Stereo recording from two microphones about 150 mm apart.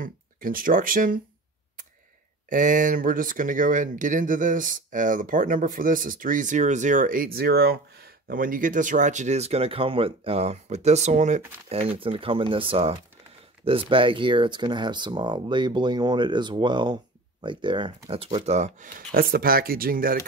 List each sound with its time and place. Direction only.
0.0 s speech: 70° right (ahead or behind)
2.5 s speech: 60° right (ahead or behind)
12.0 s speech: 35° right (ahead or behind); by 20.2 s 70° right (ahead or behind)